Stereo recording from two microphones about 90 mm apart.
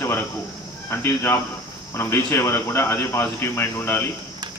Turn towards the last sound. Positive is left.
turn(degrees=25)  # may be behind; listen again after turning